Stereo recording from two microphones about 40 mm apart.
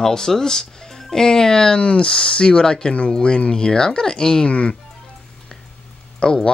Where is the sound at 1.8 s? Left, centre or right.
Left.